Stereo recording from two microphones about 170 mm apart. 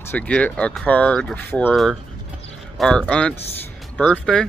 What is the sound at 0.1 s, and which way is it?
Speech, 5° left (ahead or behind).